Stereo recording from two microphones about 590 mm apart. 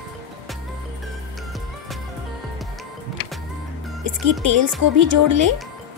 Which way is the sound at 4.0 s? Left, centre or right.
Right.